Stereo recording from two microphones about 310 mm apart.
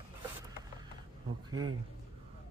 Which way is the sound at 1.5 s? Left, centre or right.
Right.